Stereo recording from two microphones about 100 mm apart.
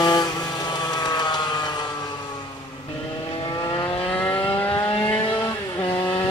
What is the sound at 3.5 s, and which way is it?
Vehicle, 40° left (ahead or behind).